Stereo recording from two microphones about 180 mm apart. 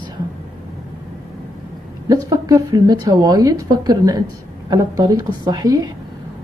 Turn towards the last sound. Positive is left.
turn(degrees=-20)  # may be behind; listen again after turning